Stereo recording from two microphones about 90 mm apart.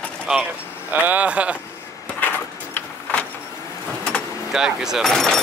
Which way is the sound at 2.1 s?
20° left (ahead or behind).